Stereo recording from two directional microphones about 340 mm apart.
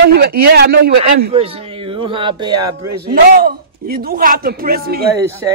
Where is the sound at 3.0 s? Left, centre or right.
Right.